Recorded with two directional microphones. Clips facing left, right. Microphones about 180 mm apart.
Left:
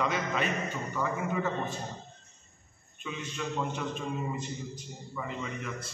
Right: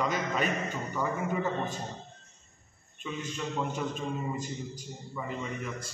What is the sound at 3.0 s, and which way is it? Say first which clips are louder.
Speech: right 1 dB; 5° right (ahead or behind).